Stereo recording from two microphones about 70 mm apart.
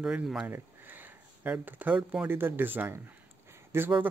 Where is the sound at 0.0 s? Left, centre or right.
Centre.